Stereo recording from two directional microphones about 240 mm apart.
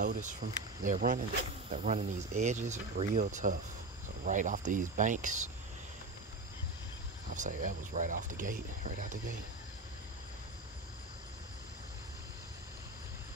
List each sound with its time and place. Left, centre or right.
0.0 s speech: right
7.3 s speech: right